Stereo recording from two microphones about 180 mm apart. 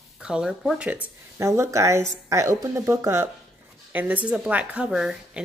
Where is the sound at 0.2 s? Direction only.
5° right (ahead or behind).